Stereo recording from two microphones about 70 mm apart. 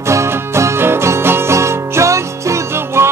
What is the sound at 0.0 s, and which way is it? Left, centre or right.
Music, right.